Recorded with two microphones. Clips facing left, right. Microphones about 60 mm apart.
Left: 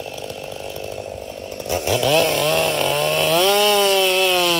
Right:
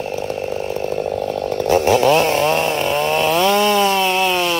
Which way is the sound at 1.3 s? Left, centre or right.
Right.